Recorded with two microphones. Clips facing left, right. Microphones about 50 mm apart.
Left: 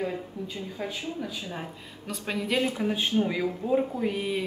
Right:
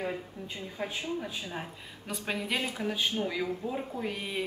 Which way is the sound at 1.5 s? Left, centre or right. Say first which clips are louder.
Left 2 dB; centre.